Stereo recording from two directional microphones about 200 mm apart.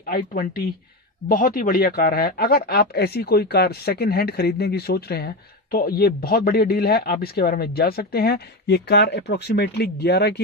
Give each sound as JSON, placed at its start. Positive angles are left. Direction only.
{"t": 0.0, "sound": "speech", "side_deg": 45}